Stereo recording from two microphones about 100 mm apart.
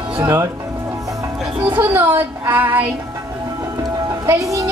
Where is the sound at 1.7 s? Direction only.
20° right (ahead or behind).